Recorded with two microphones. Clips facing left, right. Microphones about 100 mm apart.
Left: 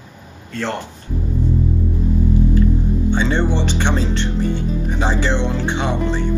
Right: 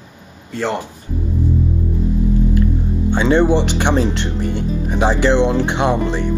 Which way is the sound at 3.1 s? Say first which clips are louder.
Right 7 dB; 15° right (ahead or behind).